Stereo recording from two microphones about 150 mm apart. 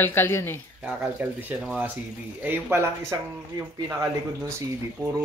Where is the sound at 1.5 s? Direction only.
10° right (ahead or behind).